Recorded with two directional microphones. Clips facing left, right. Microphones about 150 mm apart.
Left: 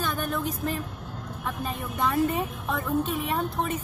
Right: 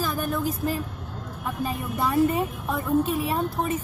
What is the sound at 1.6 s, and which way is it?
Speech, 5° right (ahead or behind).